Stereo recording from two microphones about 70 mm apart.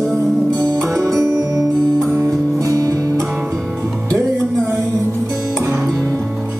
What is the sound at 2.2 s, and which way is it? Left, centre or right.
Music, right.